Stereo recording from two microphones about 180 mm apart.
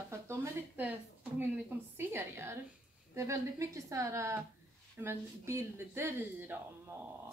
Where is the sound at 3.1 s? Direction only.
15° right (ahead or behind).